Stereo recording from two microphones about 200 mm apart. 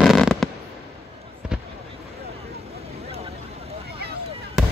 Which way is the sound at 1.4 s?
5° right (ahead or behind).